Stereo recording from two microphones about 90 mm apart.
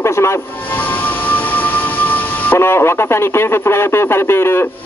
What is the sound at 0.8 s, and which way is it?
Music, 20° left (ahead or behind).